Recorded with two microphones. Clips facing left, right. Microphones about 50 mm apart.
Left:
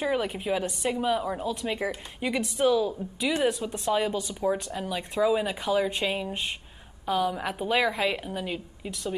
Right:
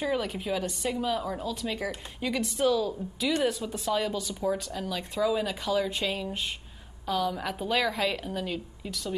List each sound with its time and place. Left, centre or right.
0.0 s speech: centre
3.9 s speech: left